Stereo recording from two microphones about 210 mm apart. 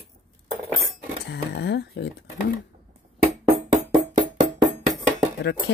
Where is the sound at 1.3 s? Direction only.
55° left (ahead or behind).